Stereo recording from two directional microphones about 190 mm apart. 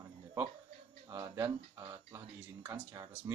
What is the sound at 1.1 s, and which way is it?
Speech, 15° right (ahead or behind).